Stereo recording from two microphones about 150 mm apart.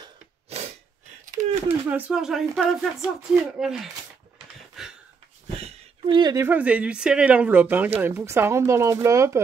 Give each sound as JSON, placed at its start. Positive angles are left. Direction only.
{"t": 0.5, "sound": "sneeze", "side_deg": -45}
{"t": 1.2, "sound": "a sound", "side_deg": -55}
{"t": 1.9, "sound": "speech", "side_deg": -10}
{"t": 4.8, "sound": "a sound", "side_deg": 0}
{"t": 6.0, "sound": "speech", "side_deg": -30}
{"t": 6.4, "sound": "speech", "side_deg": -10}